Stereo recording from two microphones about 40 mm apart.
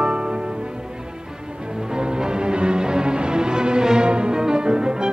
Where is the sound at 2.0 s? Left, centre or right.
Centre.